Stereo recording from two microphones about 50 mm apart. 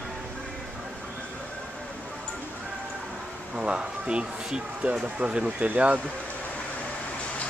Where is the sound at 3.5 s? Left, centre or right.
Centre.